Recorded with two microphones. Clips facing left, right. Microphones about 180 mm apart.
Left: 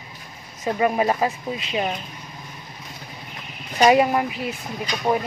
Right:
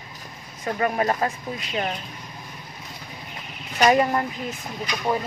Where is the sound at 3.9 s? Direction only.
10° left (ahead or behind).